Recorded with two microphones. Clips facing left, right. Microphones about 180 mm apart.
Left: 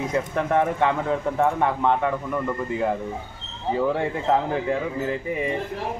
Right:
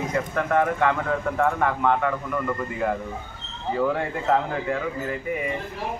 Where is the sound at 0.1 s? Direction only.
25° left (ahead or behind).